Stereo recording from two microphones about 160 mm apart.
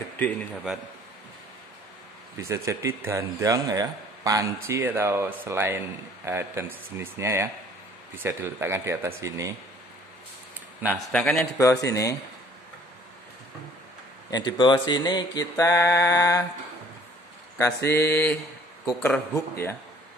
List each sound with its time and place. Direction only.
2.3 s speech: 20° right (ahead or behind)
10.9 s speech: 5° left (ahead or behind)
11.5 s mantra: 20° left (ahead or behind)
14.3 s mantra: 25° left (ahead or behind)
17.6 s mantra: 20° left (ahead or behind)
18.1 s speech: 15° left (ahead or behind)